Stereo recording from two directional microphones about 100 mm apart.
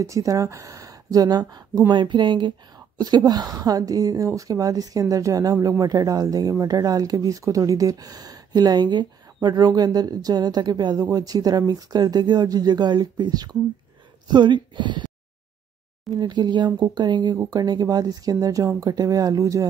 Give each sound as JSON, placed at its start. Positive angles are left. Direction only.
{"t": 0.0, "sound": "speech", "side_deg": -35}
{"t": 16.1, "sound": "speech", "side_deg": -45}